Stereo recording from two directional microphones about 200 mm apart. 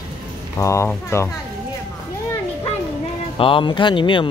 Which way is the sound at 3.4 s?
25° left (ahead or behind).